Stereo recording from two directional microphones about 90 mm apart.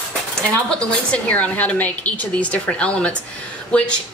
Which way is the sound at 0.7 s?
15° left (ahead or behind).